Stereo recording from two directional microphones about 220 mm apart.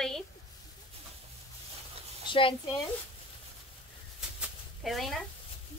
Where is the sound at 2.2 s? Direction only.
25° left (ahead or behind).